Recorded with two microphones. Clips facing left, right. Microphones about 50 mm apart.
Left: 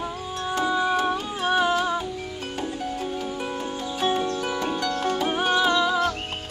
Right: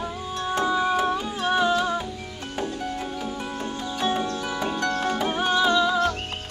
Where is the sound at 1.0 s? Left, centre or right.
Centre.